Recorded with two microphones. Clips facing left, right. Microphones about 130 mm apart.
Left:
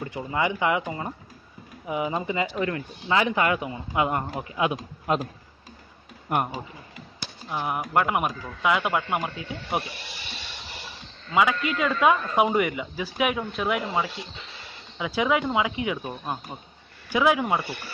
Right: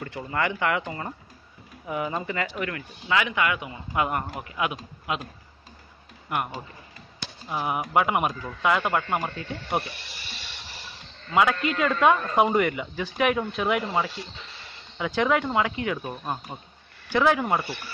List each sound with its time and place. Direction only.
0.0 s speech: 15° left (ahead or behind)
2.6 s speech: 30° left (ahead or behind)
3.9 s speech: 20° left (ahead or behind)
6.2 s speech: 45° left (ahead or behind)
7.4 s a man's voice: centre (ahead or behind)
11.3 s a man's voice: centre (ahead or behind)